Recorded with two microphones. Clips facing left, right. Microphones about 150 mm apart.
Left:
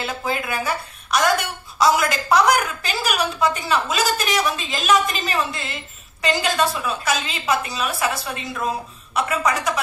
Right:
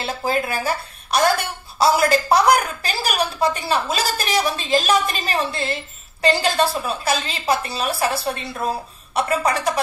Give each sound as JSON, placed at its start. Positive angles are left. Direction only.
{"t": 0.0, "sound": "a woman's voice", "side_deg": -35}